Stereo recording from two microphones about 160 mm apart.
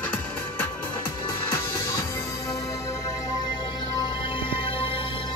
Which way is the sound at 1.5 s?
15° left (ahead or behind).